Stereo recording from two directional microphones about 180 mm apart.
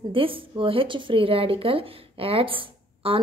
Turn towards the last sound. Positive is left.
turn(degrees=-30)  # may be behind; listen again after turning